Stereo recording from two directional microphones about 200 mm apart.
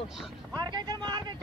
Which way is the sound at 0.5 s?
20° right (ahead or behind).